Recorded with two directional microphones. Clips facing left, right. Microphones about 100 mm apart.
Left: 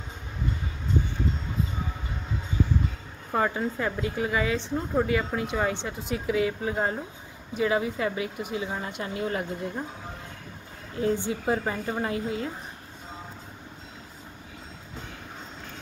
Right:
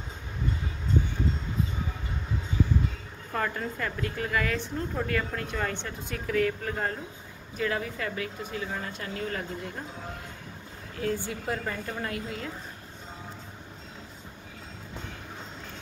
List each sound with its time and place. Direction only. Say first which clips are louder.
3.3 s a woman's voice: left 5 dB; 15° left (ahead or behind)
11.0 s a woman's voice: left 4 dB; 25° left (ahead or behind)